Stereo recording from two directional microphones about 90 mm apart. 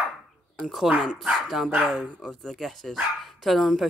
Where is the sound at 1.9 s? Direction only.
10° left (ahead or behind).